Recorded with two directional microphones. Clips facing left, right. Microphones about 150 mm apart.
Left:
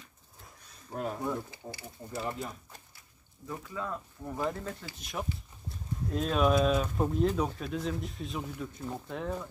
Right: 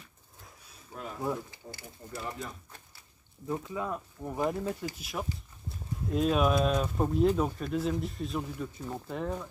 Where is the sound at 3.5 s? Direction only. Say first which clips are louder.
Right 4 dB; 20° right (ahead or behind); by 9.4 s centre (ahead or behind).